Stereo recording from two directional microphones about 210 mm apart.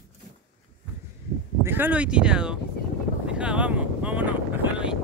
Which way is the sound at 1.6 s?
10° right (ahead or behind).